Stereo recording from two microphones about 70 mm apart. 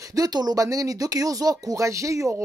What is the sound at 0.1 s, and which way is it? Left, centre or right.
Speech, right.